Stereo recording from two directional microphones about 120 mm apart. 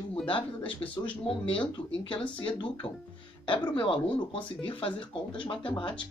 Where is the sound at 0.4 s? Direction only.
10° left (ahead or behind).